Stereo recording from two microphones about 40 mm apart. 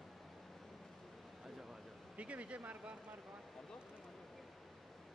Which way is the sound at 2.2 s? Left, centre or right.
Right.